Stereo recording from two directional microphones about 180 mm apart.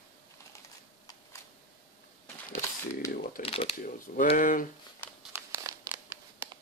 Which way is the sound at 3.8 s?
45° left (ahead or behind).